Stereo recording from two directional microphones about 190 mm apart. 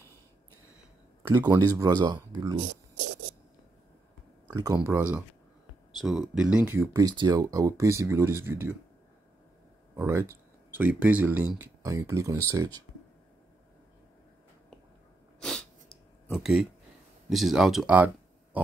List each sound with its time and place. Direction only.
1.3 s speech: 20° right (ahead or behind)
4.5 s speech: 20° right (ahead or behind)
6.3 s speech: 5° right (ahead or behind)
9.9 s speech: 15° right (ahead or behind)
16.3 s speech: centre (ahead or behind)